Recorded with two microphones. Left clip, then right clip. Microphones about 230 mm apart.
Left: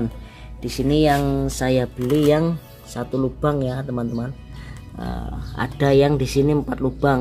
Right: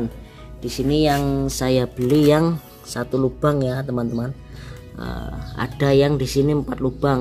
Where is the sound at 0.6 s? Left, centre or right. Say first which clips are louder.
Left 1 dB; centre.